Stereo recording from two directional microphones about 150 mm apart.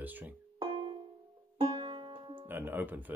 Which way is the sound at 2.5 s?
15° right (ahead or behind).